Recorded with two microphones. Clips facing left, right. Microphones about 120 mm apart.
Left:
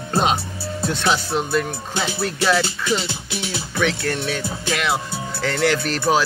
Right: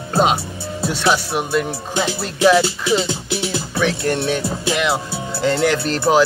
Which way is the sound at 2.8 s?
5° right (ahead or behind).